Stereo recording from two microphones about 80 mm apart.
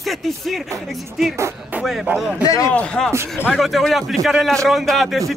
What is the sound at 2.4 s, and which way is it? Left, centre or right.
Speech, left.